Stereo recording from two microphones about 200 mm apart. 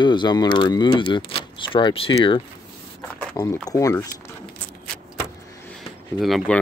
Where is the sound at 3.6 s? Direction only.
15° left (ahead or behind).